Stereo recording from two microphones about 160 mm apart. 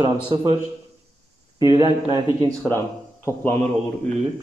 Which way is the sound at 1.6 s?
20° right (ahead or behind).